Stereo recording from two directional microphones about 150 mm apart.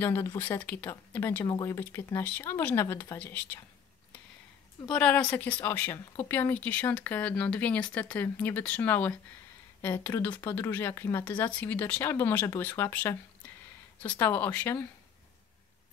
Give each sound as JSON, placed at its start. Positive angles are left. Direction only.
{"t": 0.0, "sound": "speech", "side_deg": 15}
{"t": 4.8, "sound": "speech", "side_deg": 10}
{"t": 14.1, "sound": "speech", "side_deg": 10}